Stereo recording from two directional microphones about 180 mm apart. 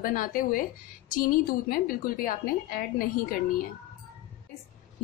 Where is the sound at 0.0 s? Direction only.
50° left (ahead or behind).